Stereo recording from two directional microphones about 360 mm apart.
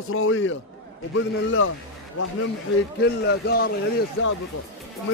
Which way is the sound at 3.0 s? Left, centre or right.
Left.